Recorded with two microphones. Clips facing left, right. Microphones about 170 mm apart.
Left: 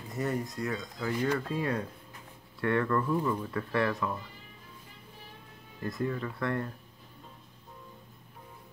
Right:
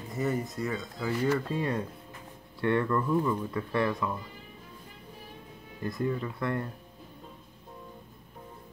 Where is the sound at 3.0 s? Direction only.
Centre (ahead or behind).